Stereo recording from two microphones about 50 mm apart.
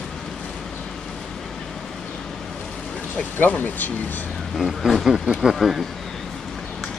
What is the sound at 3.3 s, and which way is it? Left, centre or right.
Speech, left.